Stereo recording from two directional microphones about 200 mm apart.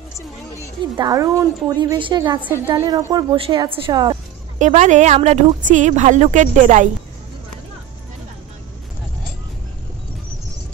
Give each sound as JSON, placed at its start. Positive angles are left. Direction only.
{"t": 0.9, "sound": "a woman's voice", "side_deg": -20}
{"t": 2.4, "sound": "a woman's voice", "side_deg": -10}
{"t": 4.6, "sound": "a woman's voice", "side_deg": -35}